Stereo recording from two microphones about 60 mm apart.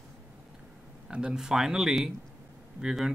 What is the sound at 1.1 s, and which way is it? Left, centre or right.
Speech, centre.